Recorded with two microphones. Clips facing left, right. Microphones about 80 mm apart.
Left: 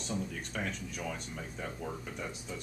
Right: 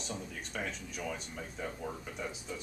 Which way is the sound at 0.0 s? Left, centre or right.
Centre.